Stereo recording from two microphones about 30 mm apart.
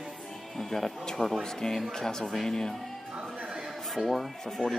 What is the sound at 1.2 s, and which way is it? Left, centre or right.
Speech, centre.